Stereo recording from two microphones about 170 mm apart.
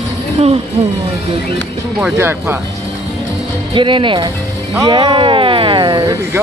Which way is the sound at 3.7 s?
30° right (ahead or behind).